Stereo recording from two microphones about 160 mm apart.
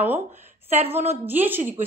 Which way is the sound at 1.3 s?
10° right (ahead or behind).